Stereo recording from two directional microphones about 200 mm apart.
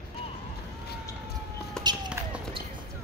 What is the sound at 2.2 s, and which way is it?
Basketball bounce, 15° right (ahead or behind).